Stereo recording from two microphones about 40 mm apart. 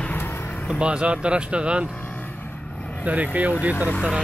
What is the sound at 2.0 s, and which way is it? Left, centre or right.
Vehicle, left.